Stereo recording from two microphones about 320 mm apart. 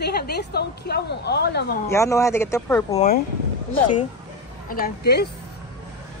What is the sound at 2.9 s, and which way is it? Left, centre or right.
Speech, left.